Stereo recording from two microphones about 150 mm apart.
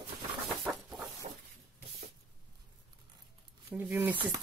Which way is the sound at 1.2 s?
55° right (ahead or behind).